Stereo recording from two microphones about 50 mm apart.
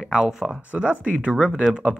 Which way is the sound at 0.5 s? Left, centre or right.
Right.